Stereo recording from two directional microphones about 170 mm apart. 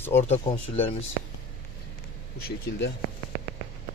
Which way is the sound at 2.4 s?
65° left (ahead or behind).